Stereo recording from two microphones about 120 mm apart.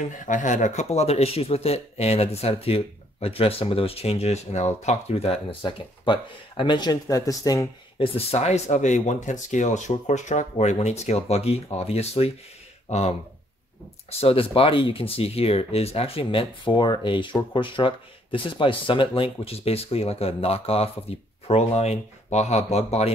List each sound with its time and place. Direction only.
0.2 s speech: 90° left; by 7.6 s 30° left (ahead or behind)
8.0 s speech: 50° left (ahead or behind)
14.2 s speech: 50° left (ahead or behind)